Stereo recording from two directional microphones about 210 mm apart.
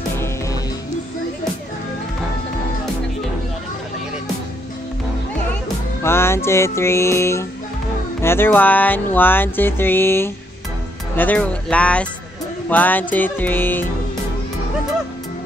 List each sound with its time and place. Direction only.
6.0 s music: 10° left (ahead or behind)
11.1 s speech: 5° left (ahead or behind)
12.6 s music: 10° left (ahead or behind)